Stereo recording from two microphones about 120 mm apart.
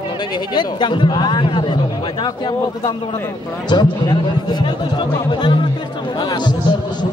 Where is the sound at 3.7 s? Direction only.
40° left (ahead or behind).